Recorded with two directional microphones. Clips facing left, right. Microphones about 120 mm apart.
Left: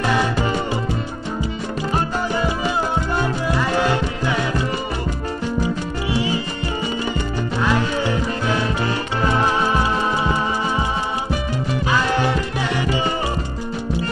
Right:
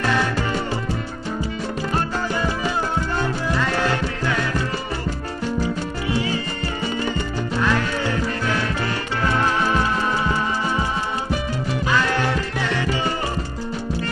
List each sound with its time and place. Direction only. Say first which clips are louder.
0.0 s music: left 2 dB; 15° left (ahead or behind)
1.9 s music: left 3 dB; 15° left (ahead or behind)
7.6 s music: left 2 dB; 15° left (ahead or behind)
11.9 s music: left 2 dB; 15° left (ahead or behind)